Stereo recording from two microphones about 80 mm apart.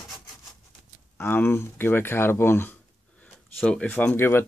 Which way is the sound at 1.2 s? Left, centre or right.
Left.